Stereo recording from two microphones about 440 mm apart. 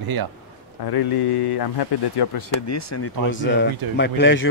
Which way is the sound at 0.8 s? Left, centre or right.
Left.